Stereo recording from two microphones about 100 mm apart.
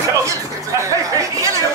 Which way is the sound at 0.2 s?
30° right (ahead or behind).